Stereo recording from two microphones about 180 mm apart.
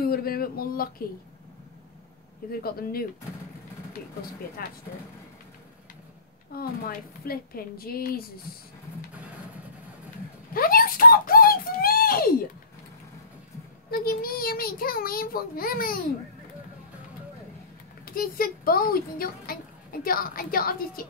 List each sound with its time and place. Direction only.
0.0 s a child's voice: 55° left (ahead or behind)
2.5 s a child's voice: 55° left (ahead or behind)
4.6 s a child's voice: 55° left (ahead or behind)
6.5 s a child's voice: 55° left (ahead or behind)
10.5 s a sound: 55° left (ahead or behind)
13.8 s a child's voice: 55° left (ahead or behind)
18.0 s a child's voice: 55° left (ahead or behind)